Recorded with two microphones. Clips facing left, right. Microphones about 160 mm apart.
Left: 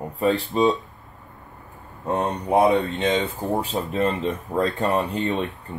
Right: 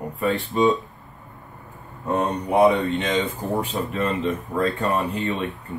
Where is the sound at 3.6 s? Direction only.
30° left (ahead or behind).